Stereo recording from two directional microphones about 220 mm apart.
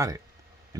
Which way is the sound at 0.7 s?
15° right (ahead or behind).